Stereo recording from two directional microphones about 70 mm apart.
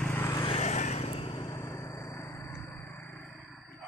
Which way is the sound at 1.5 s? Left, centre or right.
Left.